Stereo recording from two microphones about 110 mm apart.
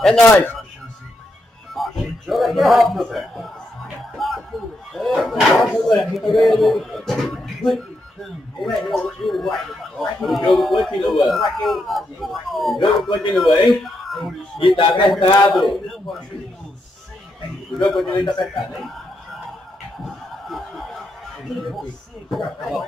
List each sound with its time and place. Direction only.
1.7 s a man's voice: centre (ahead or behind)
12.7 s speech: 50° left (ahead or behind)
13.3 s speech: centre (ahead or behind)
14.8 s speech: 50° left (ahead or behind)
15.5 s speech: centre (ahead or behind)
17.7 s speech: 5° left (ahead or behind)
18.1 s speech: 45° left (ahead or behind)
18.4 s speech: centre (ahead or behind)
20.1 s chuckle: centre (ahead or behind)
22.3 s speech: centre (ahead or behind)